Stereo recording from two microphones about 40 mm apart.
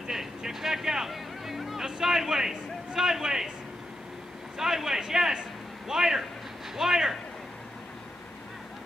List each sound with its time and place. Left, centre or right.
0.0 s a sound: centre
1.9 s a man's voice: centre
4.6 s a man's voice: centre